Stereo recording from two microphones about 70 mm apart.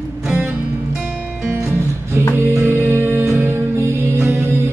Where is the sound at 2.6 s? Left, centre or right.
Right.